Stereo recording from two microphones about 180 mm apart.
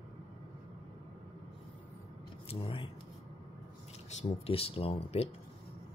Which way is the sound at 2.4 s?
30° left (ahead or behind).